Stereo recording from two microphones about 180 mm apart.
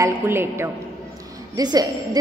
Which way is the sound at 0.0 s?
15° right (ahead or behind).